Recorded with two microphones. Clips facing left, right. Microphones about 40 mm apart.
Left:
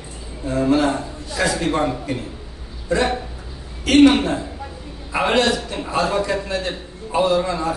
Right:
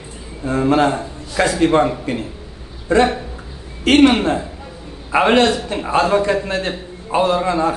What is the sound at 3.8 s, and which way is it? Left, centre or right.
Speech, right.